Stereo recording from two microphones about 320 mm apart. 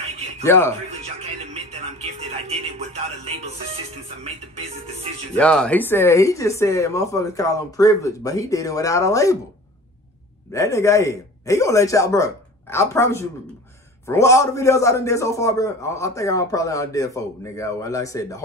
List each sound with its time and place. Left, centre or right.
0.5 s a man's voice: centre
1.0 s music: centre
5.4 s a man's voice: centre
10.5 s a man's voice: centre